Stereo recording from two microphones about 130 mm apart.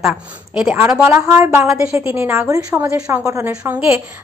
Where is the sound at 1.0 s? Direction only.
25° right (ahead or behind).